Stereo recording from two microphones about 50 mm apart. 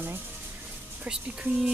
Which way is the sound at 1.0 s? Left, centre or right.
Centre.